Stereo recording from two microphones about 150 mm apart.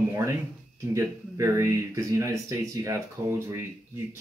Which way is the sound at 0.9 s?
20° right (ahead or behind).